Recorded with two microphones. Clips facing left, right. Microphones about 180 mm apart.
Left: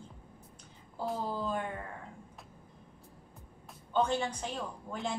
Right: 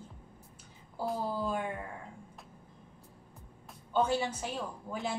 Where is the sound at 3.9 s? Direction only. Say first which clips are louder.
Right 1 dB; 5° right (ahead or behind).